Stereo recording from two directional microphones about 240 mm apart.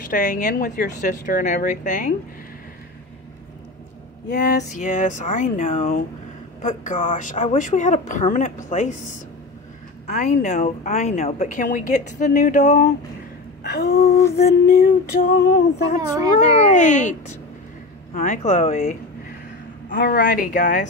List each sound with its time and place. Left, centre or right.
0.0 s a woman's voice: left
4.3 s a woman's voice: left
4.6 s a woman's voice: left
14.3 s a woman's voice: left
16.3 s a woman's voice: left
19.9 s a woman's voice: left
20.5 s a woman's voice: left